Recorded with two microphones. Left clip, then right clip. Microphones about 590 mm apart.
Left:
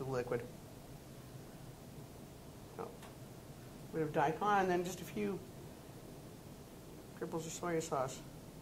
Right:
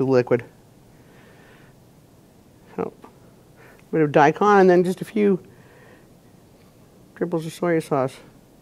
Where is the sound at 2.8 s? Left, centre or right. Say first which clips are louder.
Right 19 dB; right.